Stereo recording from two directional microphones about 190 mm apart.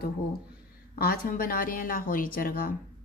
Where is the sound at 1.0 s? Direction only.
50° left (ahead or behind).